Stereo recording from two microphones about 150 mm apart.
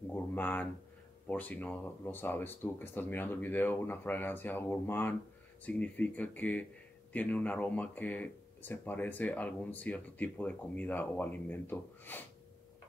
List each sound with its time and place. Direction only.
0.1 s speech: 10° left (ahead or behind)